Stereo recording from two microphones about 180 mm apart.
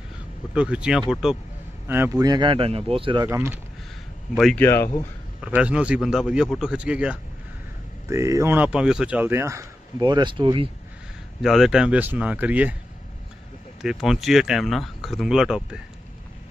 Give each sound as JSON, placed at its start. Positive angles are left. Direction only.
{"t": 0.6, "sound": "speech", "side_deg": -5}
{"t": 3.3, "sound": "speech", "side_deg": -15}
{"t": 4.6, "sound": "speech", "side_deg": 15}
{"t": 5.4, "sound": "speech", "side_deg": -5}
{"t": 8.1, "sound": "speech", "side_deg": -15}
{"t": 11.4, "sound": "speech", "side_deg": 0}
{"t": 13.8, "sound": "speech", "side_deg": 0}